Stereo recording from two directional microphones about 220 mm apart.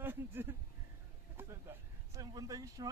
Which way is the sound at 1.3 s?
10° right (ahead or behind).